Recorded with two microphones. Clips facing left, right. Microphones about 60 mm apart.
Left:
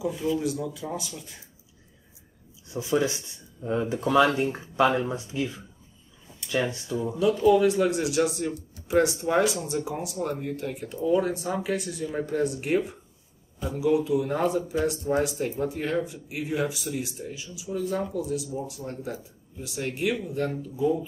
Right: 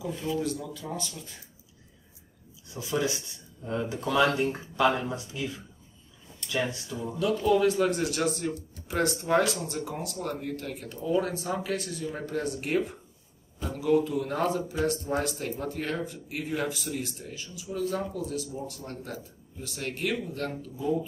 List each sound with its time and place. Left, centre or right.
0.0 s speech: centre
2.7 s speech: left